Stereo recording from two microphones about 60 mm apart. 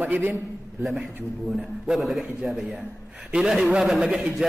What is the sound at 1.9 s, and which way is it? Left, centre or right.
A man's voice, centre.